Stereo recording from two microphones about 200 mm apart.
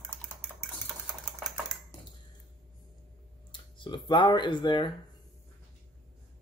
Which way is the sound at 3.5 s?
25° left (ahead or behind).